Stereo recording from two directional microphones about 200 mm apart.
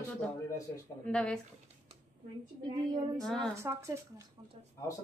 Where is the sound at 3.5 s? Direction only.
15° right (ahead or behind).